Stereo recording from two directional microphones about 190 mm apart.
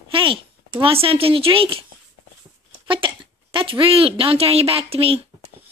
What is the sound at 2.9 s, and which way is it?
Speech, 25° right (ahead or behind).